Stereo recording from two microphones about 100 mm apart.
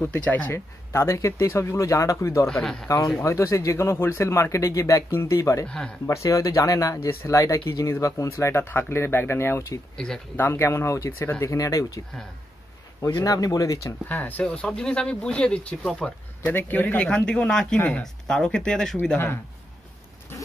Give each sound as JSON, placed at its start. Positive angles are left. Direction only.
{"t": 0.0, "sound": "speech", "side_deg": 15}
{"t": 2.6, "sound": "speech", "side_deg": 5}
{"t": 3.3, "sound": "speech", "side_deg": 30}
{"t": 5.7, "sound": "speech", "side_deg": 10}
{"t": 6.0, "sound": "speech", "side_deg": 35}
{"t": 9.9, "sound": "speech", "side_deg": 5}
{"t": 10.3, "sound": "speech", "side_deg": 25}
{"t": 11.4, "sound": "speech", "side_deg": 35}
{"t": 13.1, "sound": "speech", "side_deg": 35}
{"t": 14.0, "sound": "speech", "side_deg": 20}
{"t": 16.4, "sound": "speech", "side_deg": 20}
{"t": 19.0, "sound": "speech", "side_deg": 20}
{"t": 20.3, "sound": "zipper", "side_deg": 25}